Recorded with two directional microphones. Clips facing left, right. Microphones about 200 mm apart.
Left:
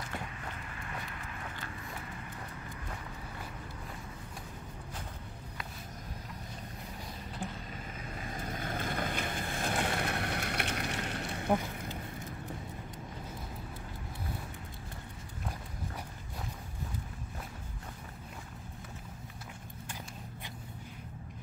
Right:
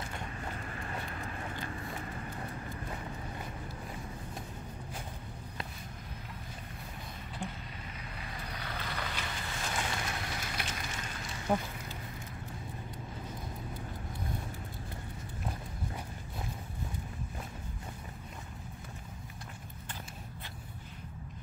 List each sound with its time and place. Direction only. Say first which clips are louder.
8.2 s boat: left 5 dB; 45° left (ahead or behind)